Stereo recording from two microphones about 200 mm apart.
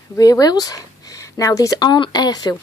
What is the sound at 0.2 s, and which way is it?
Speech, 20° left (ahead or behind).